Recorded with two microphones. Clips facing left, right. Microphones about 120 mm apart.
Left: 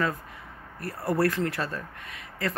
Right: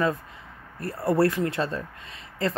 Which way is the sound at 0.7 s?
25° right (ahead or behind).